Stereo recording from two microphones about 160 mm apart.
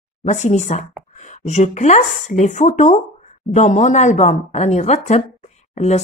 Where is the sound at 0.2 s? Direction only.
45° left (ahead or behind).